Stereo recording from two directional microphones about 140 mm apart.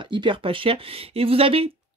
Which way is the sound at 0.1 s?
35° right (ahead or behind).